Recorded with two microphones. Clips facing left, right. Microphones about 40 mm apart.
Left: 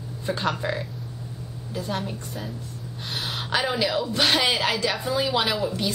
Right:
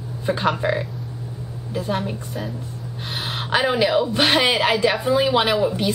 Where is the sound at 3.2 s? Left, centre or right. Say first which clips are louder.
Right 5 dB; right.